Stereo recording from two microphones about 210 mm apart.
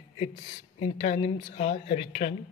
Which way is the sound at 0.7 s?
30° left (ahead or behind).